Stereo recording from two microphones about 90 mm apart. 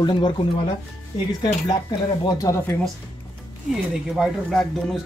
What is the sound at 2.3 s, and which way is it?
Speech, 35° left (ahead or behind).